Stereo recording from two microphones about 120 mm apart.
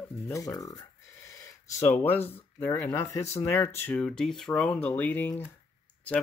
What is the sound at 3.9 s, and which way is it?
Speech, 5° left (ahead or behind).